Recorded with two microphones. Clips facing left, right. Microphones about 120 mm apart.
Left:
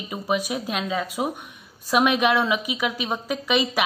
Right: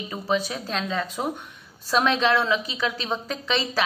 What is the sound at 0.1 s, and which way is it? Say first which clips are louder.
A woman's voice: left 1 dB; 15° left (ahead or behind).